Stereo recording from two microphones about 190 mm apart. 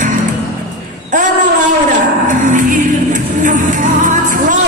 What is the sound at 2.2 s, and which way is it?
Music, 40° right (ahead or behind).